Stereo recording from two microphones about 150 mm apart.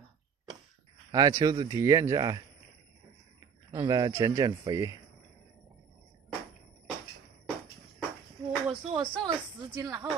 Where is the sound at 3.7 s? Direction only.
25° right (ahead or behind).